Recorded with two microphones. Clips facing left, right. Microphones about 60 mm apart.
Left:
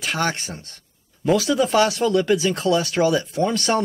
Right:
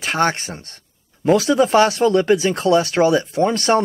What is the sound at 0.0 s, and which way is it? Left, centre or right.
Speech, right.